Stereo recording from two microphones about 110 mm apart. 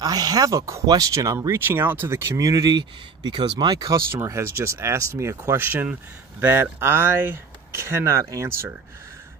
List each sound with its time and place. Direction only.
0.0 s speech: 35° right (ahead or behind)
1.7 s speech: 20° right (ahead or behind); by 3.9 s 40° right (ahead or behind)
4.1 s speech: 25° right (ahead or behind)